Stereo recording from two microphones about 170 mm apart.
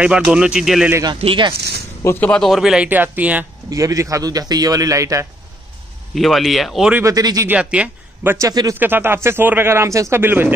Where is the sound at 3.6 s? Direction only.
20° right (ahead or behind).